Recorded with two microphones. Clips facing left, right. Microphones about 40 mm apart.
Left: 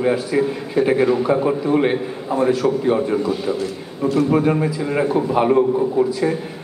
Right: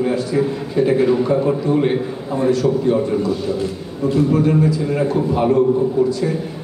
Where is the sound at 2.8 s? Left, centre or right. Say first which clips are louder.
Right 1 dB; left.